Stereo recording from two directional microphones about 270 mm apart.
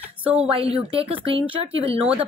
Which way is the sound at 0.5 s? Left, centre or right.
Right.